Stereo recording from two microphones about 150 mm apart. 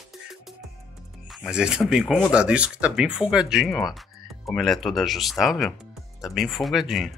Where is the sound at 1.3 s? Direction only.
5° right (ahead or behind).